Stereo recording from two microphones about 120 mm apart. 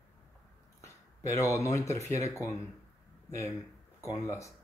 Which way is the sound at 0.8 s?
25° left (ahead or behind).